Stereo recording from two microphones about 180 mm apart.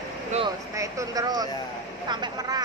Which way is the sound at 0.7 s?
20° right (ahead or behind).